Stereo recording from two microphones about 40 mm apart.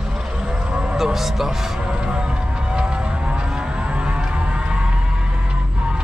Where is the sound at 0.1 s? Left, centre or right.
Centre.